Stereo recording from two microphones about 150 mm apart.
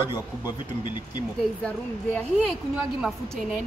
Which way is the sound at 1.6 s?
5° left (ahead or behind).